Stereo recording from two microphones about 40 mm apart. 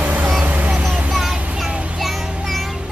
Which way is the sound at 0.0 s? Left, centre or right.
Right.